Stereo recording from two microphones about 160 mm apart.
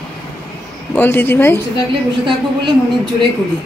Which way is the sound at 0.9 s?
15° left (ahead or behind).